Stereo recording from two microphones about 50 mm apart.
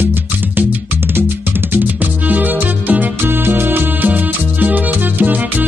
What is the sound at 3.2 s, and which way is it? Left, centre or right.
Music, right.